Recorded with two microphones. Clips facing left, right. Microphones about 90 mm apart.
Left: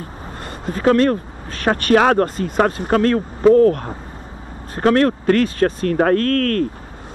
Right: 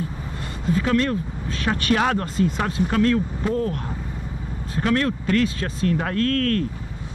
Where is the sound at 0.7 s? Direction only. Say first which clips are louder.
Left 6 dB; 45° left (ahead or behind).